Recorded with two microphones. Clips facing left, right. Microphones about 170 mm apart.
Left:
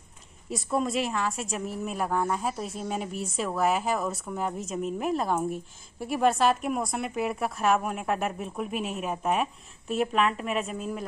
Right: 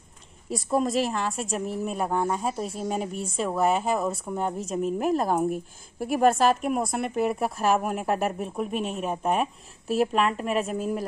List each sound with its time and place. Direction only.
0.7 s speech: centre (ahead or behind)
2.0 s speech: 25° right (ahead or behind)
2.3 s speech: centre (ahead or behind)
5.1 s a woman's voice: 45° right (ahead or behind)
6.3 s speech: centre (ahead or behind)
7.9 s speech: 35° right (ahead or behind)
8.7 s speech: 5° left (ahead or behind)